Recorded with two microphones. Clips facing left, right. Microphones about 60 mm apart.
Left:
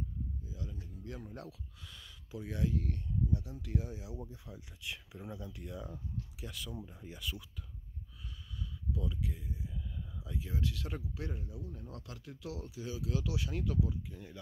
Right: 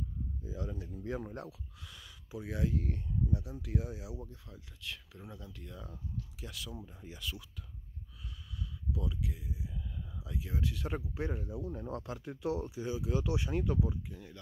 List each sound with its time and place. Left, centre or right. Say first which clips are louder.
0.5 s speech: right 5 dB; right
1.3 s speech: right 3 dB; centre
4.3 s speech: left 2 dB; centre
8.5 s speech: right 1 dB; centre; by 11.3 s right
11.3 s speech: right 6 dB; right
12.6 s speech: right 4 dB; right
14.1 s speech: even; centre